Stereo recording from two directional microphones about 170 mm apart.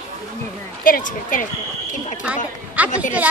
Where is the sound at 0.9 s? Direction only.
50° left (ahead or behind).